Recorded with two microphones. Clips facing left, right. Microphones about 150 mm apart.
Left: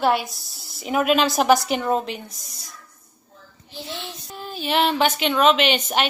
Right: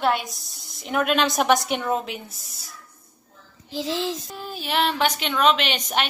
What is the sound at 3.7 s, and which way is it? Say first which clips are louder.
Speech: right 8 dB; 90° right.